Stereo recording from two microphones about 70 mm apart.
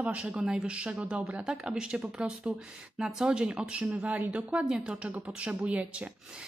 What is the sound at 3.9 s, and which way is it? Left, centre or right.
Music, right.